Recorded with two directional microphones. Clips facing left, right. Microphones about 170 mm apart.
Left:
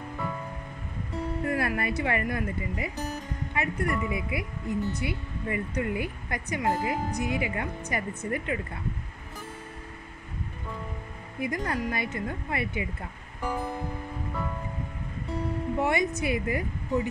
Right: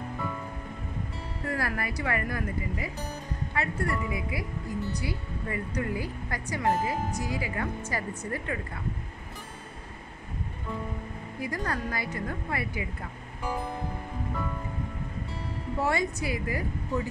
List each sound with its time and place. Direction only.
1.5 s speech: 25° left (ahead or behind)
11.3 s speech: 20° left (ahead or behind)
15.8 s speech: 20° left (ahead or behind)